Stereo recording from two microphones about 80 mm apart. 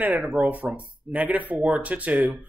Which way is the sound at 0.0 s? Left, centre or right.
Centre.